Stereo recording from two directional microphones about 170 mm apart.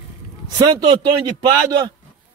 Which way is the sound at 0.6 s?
30° right (ahead or behind).